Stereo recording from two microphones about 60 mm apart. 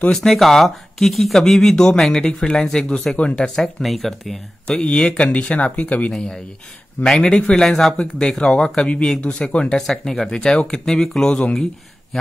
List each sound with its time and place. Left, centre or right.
0.1 s speech: centre
4.6 s speech: centre
6.1 s speech: centre